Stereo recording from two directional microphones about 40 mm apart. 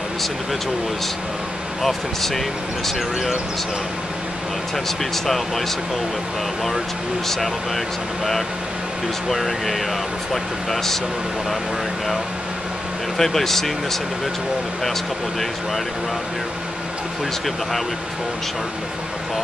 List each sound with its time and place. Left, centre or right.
1.8 s speech: centre
4.8 s speech: centre
7.2 s speech: centre
9.3 s speech: centre
13.2 s speech: centre